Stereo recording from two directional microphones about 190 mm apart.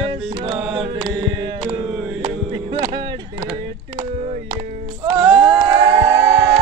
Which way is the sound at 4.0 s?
30° right (ahead or behind).